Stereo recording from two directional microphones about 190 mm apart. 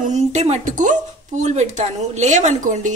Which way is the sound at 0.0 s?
35° right (ahead or behind).